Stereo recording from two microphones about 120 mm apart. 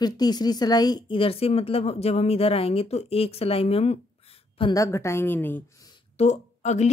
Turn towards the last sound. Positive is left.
turn(degrees=70)  # may be behind; listen again after turning